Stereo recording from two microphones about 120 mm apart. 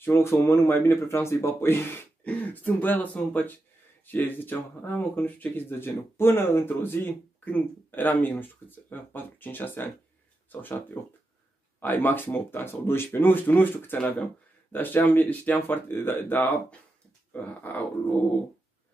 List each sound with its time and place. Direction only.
0.0 s speech: 20° left (ahead or behind)